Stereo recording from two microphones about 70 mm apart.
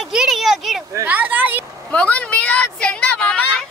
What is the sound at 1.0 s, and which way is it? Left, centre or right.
Speech, right.